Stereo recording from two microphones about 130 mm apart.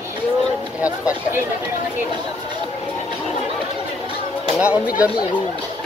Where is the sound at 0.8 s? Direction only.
10° right (ahead or behind).